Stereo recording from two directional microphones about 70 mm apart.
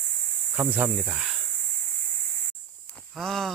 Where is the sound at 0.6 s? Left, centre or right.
Right.